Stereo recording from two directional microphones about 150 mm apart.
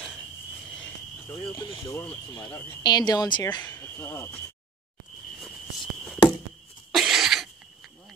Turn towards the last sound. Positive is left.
turn(degrees=0)  # may be behind; listen again after turning